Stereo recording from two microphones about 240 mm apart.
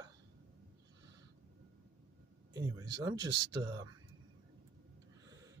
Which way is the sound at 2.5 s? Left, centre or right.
Centre.